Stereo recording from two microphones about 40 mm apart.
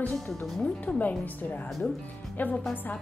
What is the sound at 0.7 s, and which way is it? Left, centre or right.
A woman's voice, left.